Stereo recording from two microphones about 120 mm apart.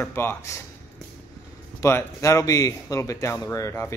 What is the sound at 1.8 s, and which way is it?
Speech, 25° left (ahead or behind).